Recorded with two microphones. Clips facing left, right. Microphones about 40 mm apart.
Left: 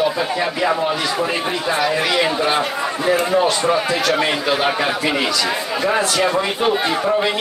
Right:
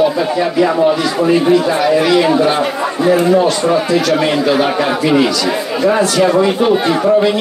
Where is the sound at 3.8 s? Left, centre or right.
Left.